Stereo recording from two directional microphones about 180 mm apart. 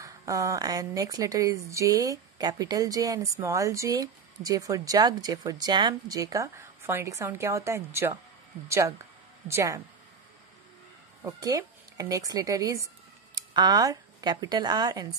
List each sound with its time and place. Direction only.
0.0 s a woman's voice: 20° right (ahead or behind)
11.2 s speech: 20° right (ahead or behind)